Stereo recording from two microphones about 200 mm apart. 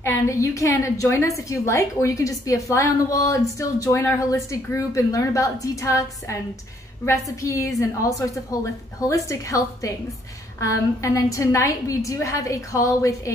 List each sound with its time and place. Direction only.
0.0 s a woman's voice: 15° left (ahead or behind)